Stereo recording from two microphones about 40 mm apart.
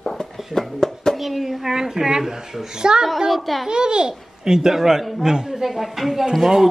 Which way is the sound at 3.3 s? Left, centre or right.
Centre.